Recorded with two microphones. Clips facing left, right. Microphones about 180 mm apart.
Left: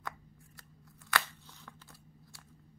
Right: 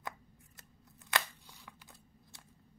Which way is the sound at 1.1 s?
20° right (ahead or behind).